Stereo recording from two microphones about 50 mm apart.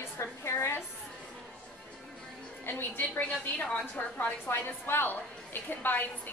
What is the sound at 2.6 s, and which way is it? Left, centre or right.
A woman's voice, left.